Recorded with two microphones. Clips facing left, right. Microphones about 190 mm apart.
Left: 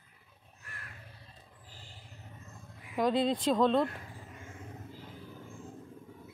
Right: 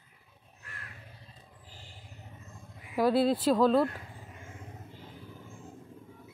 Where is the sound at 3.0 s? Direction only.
5° right (ahead or behind).